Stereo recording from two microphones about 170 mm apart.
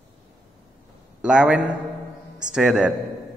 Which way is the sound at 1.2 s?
5° right (ahead or behind).